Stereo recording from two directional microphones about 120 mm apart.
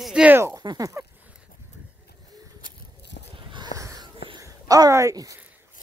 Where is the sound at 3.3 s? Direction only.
40° right (ahead or behind).